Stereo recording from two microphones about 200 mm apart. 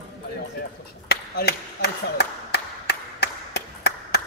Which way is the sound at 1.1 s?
55° left (ahead or behind).